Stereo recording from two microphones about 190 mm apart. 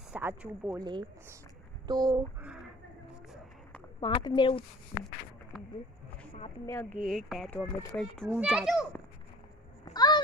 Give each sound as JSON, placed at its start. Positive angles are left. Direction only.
{"t": 0.1, "sound": "speech", "side_deg": -10}
{"t": 2.4, "sound": "a sound", "side_deg": -5}
{"t": 4.0, "sound": "speech", "side_deg": 25}
{"t": 6.6, "sound": "speech", "side_deg": 15}
{"t": 7.1, "sound": "speech", "side_deg": 0}
{"t": 9.9, "sound": "a sound", "side_deg": 20}